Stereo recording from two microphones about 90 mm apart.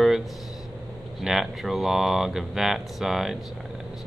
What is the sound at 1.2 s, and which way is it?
Speech, centre (ahead or behind).